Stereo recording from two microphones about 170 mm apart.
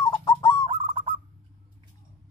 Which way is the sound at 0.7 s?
30° right (ahead or behind).